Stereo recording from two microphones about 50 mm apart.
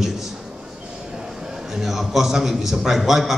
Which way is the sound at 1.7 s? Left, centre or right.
Centre.